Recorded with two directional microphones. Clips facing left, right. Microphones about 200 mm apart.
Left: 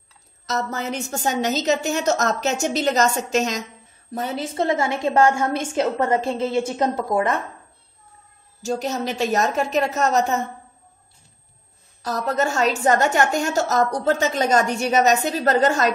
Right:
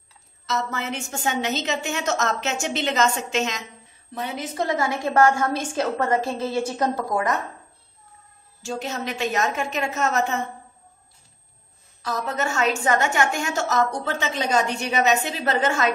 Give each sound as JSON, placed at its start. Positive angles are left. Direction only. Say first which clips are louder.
{"t": 0.5, "sound": "a woman's voice", "louder": "left 2 dB", "side_deg": 40}
{"t": 4.4, "sound": "a woman's voice", "louder": "left 3 dB", "side_deg": 25}
{"t": 8.6, "sound": "a woman's voice", "louder": "left 5 dB", "side_deg": 40}
{"t": 12.0, "sound": "a woman's voice", "louder": "left 4 dB", "side_deg": 40}